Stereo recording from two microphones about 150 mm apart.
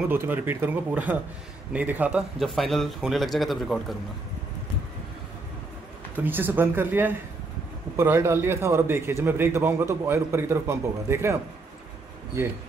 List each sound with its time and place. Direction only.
0.1 s a man's voice: 15° right (ahead or behind)
6.1 s a man's voice: 15° right (ahead or behind)